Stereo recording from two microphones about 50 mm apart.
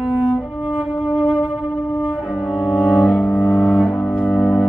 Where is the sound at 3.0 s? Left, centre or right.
Centre.